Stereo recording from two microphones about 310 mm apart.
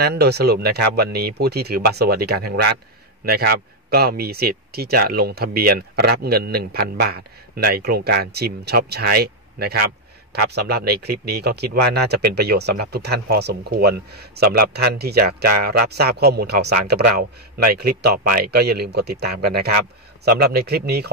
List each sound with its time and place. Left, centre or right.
0.0 s a man's voice: right